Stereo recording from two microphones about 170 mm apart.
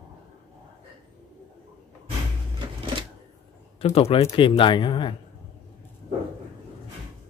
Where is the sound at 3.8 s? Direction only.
35° left (ahead or behind).